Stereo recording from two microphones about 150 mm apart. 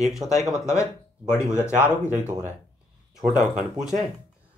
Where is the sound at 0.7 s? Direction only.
20° left (ahead or behind).